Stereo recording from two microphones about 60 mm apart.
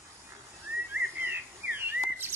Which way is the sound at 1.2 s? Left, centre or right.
Right.